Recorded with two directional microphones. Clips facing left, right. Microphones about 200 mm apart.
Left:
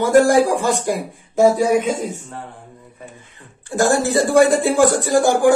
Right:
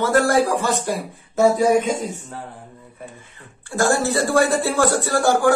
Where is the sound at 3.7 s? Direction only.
20° left (ahead or behind).